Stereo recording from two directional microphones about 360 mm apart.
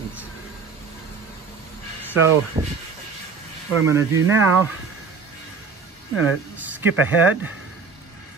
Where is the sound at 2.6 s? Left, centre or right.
Centre.